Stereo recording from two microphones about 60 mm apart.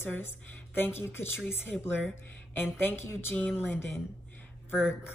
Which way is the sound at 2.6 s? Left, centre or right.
Left.